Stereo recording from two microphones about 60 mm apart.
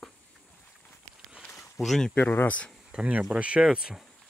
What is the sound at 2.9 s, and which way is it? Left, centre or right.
Speech, centre.